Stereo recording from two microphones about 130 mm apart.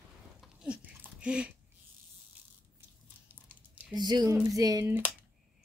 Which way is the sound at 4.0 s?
35° right (ahead or behind).